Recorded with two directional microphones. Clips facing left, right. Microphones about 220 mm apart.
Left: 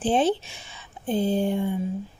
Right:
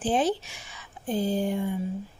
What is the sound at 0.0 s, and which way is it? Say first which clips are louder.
Speech: left 3 dB; 25° left (ahead or behind).